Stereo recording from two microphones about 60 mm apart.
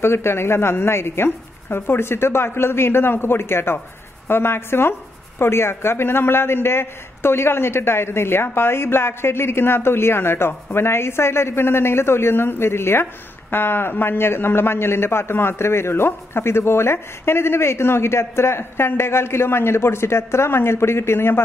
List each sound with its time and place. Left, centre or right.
0.0 s speech: left